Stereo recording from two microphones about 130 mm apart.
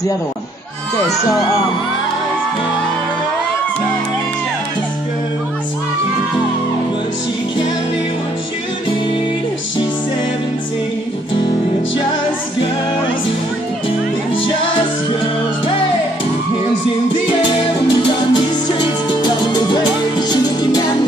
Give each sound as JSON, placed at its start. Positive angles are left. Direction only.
{"t": 17.4, "sound": "music", "side_deg": 35}